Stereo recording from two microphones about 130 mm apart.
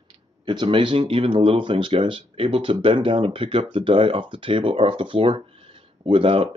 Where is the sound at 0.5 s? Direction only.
40° right (ahead or behind).